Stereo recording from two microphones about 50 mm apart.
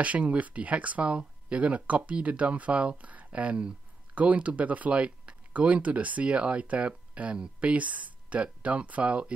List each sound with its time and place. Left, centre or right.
0.0 s speech: right